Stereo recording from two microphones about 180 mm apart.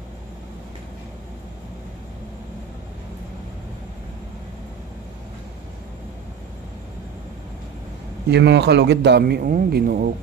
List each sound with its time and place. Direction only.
8.3 s speech: 70° right (ahead or behind)